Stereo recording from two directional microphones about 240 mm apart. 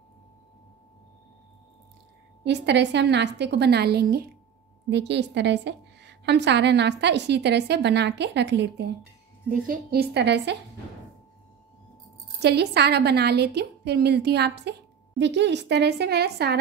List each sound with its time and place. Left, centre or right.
2.4 s a woman's voice: right
12.4 s a woman's voice: right